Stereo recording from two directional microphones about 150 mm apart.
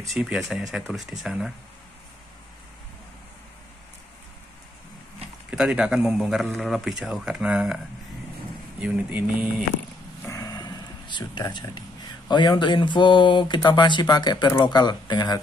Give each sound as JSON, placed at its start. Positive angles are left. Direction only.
{"t": 0.1, "sound": "a man's voice", "side_deg": 0}
{"t": 5.5, "sound": "a man's voice", "side_deg": -5}
{"t": 8.8, "sound": "speech", "side_deg": -10}
{"t": 10.2, "sound": "a sound", "side_deg": 20}
{"t": 12.3, "sound": "speech", "side_deg": 30}